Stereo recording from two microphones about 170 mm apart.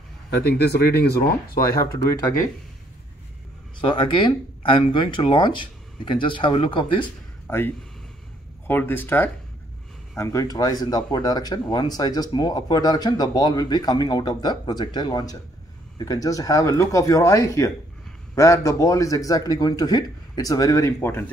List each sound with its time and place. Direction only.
0.4 s speech: 75° left (ahead or behind)
3.8 s speech: 30° left (ahead or behind)
7.4 s speech: 10° left (ahead or behind)